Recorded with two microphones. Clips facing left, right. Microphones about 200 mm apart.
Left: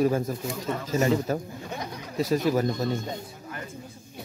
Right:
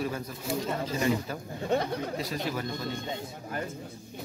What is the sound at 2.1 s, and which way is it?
Speech, 45° left (ahead or behind).